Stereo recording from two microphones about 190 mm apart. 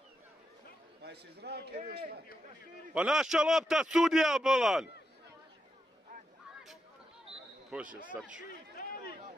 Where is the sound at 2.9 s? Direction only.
5° right (ahead or behind).